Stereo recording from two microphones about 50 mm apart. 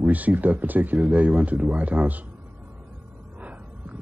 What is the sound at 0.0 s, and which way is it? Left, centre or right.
Speech, right.